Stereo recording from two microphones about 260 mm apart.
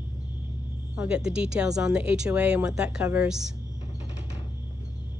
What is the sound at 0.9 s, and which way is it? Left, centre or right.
Speech, centre.